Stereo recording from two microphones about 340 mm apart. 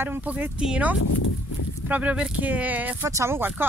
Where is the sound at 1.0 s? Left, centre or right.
Left.